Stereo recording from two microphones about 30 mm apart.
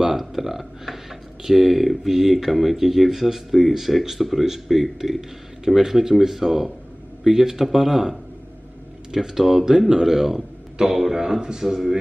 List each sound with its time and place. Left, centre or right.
0.2 s speech: centre
9.8 s speech: centre